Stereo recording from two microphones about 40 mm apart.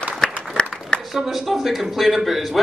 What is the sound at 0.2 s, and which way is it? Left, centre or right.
Applause, left.